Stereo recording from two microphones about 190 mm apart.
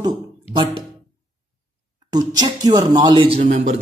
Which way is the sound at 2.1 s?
20° right (ahead or behind).